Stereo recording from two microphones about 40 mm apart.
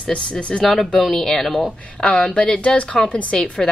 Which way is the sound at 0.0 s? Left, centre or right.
Left.